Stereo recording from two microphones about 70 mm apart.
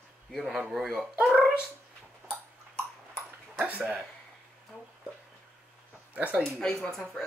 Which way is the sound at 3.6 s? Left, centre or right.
Right.